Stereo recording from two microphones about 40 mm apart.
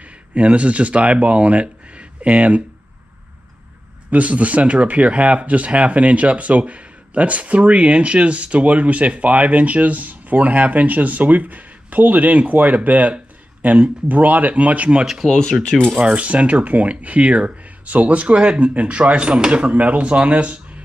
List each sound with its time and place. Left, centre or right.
0.3 s speech: right
4.1 s speech: right
15.2 s speech: centre
16.0 s speech: right